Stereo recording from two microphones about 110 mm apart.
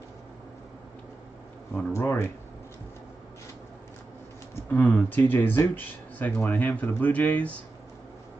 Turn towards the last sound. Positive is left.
turn(degrees=15)  # may be behind; listen again after turning